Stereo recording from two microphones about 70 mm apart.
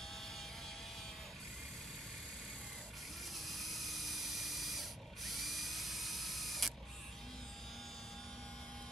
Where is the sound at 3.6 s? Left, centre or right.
Centre.